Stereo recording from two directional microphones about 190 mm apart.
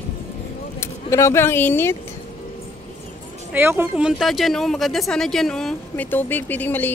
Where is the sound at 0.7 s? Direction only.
15° left (ahead or behind).